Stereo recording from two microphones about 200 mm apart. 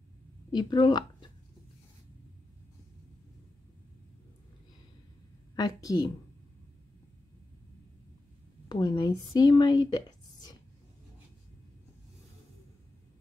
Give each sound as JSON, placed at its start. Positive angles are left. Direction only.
{"t": 0.5, "sound": "a woman's voice", "side_deg": 20}
{"t": 5.6, "sound": "a woman's voice", "side_deg": 20}
{"t": 8.6, "sound": "speech", "side_deg": 20}